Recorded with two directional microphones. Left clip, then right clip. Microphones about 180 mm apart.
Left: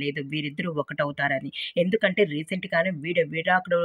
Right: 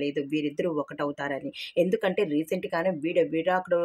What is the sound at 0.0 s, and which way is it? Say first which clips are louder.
Speech: right 1 dB; 25° left (ahead or behind).